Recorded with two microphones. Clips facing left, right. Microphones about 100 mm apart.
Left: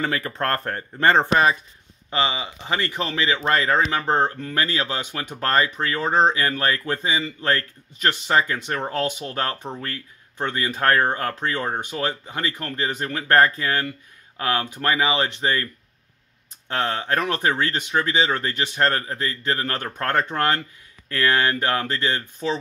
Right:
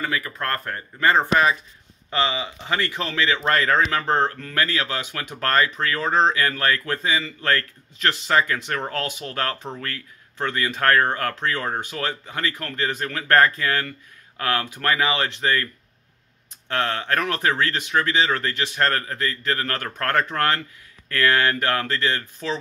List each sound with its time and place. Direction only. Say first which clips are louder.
0.0 s speech: left 2 dB; 30° left (ahead or behind)